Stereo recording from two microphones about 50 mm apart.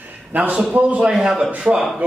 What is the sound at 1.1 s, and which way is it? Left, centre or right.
Speech, centre.